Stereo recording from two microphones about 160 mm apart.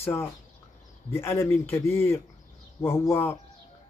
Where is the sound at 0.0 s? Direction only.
15° left (ahead or behind).